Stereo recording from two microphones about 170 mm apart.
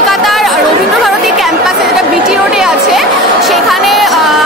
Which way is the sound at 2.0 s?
5° right (ahead or behind).